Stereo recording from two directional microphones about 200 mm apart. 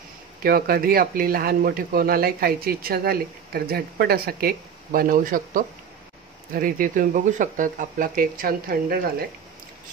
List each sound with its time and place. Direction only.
0.4 s a man's voice: 50° right (ahead or behind)